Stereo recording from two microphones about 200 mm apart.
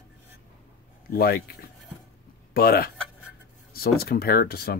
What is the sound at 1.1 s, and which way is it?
Speech, 50° left (ahead or behind).